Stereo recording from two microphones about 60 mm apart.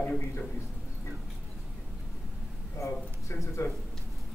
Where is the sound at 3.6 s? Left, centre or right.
Left.